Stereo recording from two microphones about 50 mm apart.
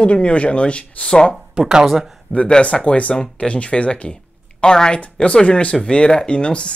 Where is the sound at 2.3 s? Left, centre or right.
Centre.